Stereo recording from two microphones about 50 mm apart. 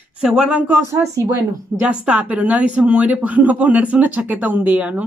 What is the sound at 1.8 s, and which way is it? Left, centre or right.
Speech, right.